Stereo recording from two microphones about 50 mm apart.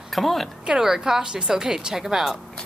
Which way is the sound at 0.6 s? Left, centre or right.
Centre.